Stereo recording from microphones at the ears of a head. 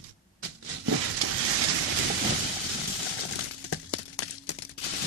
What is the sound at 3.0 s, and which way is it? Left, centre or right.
Breaking, left.